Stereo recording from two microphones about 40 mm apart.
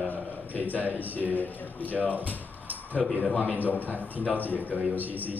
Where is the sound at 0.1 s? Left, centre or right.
Left.